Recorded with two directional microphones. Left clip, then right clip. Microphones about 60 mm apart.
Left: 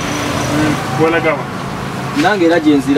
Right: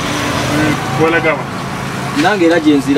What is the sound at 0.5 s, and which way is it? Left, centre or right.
Speech, centre.